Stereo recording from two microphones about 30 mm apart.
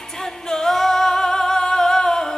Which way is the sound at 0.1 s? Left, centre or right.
Centre.